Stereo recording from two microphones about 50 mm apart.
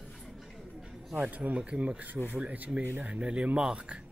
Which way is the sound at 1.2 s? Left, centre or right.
Right.